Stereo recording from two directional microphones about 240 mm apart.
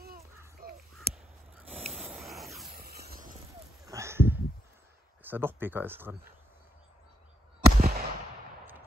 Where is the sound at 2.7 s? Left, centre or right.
Right.